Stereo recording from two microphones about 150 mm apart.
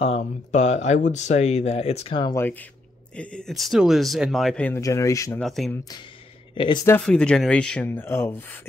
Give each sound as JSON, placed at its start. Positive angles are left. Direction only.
{"t": 0.0, "sound": "speech", "side_deg": 50}
{"t": 3.2, "sound": "speech", "side_deg": 5}
{"t": 4.6, "sound": "speech", "side_deg": 20}
{"t": 5.4, "sound": "speech", "side_deg": 5}
{"t": 6.5, "sound": "speech", "side_deg": 35}
{"t": 6.9, "sound": "speech", "side_deg": 5}